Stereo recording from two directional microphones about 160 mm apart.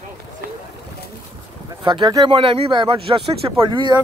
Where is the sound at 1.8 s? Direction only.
25° right (ahead or behind).